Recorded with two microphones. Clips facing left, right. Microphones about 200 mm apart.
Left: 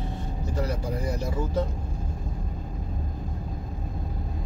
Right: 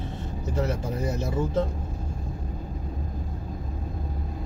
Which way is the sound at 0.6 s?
25° right (ahead or behind).